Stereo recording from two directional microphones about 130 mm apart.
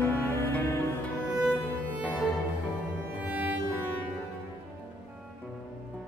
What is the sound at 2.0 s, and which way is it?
Cello, 10° left (ahead or behind).